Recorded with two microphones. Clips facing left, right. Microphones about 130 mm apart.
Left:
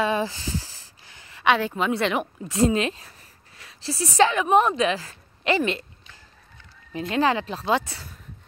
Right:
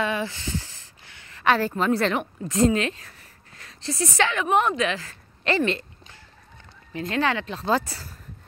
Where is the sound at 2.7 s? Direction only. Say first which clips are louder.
Even; 20° left (ahead or behind).